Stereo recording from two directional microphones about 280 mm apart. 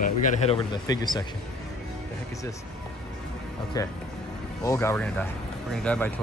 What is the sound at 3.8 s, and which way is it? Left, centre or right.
Speech, centre.